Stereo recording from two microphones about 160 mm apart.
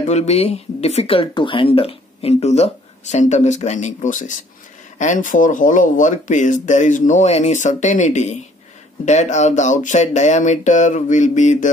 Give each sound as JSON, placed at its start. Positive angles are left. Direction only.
{"t": 0.1, "sound": "speech", "side_deg": 45}